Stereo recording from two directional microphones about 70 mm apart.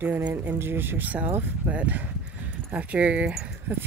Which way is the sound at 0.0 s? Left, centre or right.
Right.